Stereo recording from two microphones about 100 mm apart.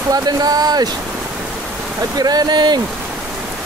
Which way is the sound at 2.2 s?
40° right (ahead or behind).